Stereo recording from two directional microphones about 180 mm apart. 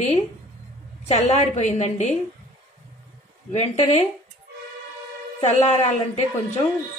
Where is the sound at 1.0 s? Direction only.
40° left (ahead or behind).